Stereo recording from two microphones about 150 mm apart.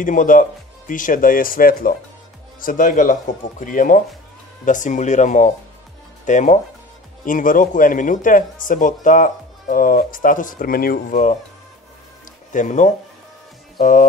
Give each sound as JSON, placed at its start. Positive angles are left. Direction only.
{"t": 0.0, "sound": "a man's voice", "side_deg": 60}
{"t": 12.5, "sound": "a man's voice", "side_deg": 55}